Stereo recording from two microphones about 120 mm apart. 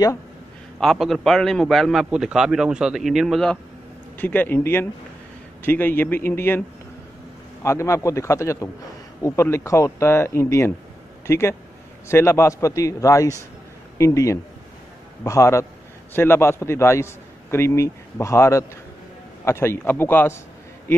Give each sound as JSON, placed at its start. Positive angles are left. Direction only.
{"t": 0.7, "sound": "a man's voice", "side_deg": 0}
{"t": 4.2, "sound": "speech", "side_deg": 15}
{"t": 7.6, "sound": "a man's voice", "side_deg": 25}